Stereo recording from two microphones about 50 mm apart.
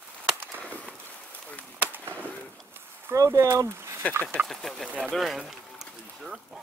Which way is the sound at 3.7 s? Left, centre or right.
Right.